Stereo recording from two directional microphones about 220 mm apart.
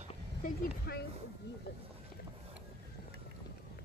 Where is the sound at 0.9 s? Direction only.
45° left (ahead or behind).